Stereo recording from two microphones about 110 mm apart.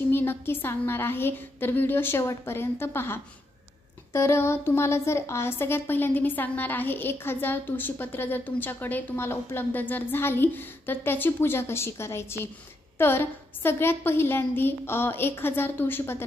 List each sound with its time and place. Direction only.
0.1 s a woman's voice: 20° left (ahead or behind)